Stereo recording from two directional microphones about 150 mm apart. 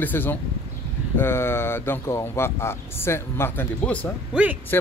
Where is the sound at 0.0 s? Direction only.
15° left (ahead or behind).